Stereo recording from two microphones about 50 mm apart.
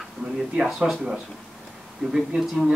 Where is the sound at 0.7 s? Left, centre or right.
Centre.